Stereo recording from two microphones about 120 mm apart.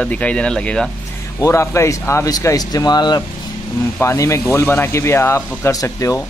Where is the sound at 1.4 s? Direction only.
25° left (ahead or behind).